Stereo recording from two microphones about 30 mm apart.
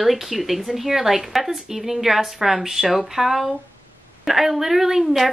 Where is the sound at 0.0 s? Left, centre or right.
Centre.